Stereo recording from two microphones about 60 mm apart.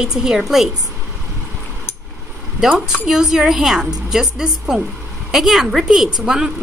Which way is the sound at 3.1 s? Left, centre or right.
Centre.